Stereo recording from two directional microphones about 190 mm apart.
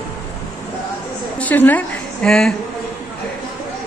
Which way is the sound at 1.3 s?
10° left (ahead or behind).